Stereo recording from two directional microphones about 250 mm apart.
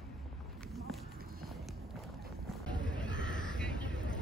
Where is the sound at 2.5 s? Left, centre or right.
Centre.